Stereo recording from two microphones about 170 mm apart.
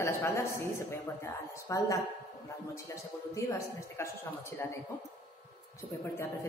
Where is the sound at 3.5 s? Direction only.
15° left (ahead or behind).